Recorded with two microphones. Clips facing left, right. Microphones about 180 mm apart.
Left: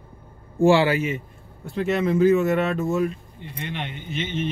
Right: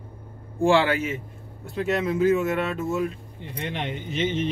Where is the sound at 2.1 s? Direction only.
50° left (ahead or behind).